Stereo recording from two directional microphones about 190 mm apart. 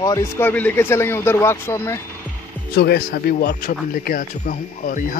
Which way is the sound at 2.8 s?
55° left (ahead or behind).